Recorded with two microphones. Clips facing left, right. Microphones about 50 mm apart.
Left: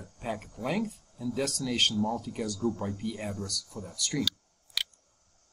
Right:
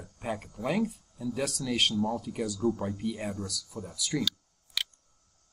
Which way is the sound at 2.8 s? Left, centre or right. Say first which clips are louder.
Right 1 dB; centre.